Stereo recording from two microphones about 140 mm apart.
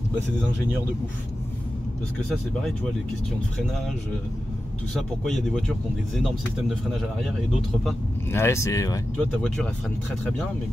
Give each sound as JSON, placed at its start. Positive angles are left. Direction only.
{"t": 2.1, "sound": "speech", "side_deg": 5}
{"t": 4.9, "sound": "speech", "side_deg": 0}
{"t": 8.3, "sound": "speech", "side_deg": 20}
{"t": 9.1, "sound": "speech", "side_deg": 5}